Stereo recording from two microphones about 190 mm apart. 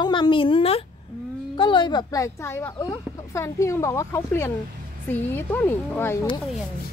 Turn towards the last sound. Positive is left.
turn(degrees=10)  # may be behind; listen again after turning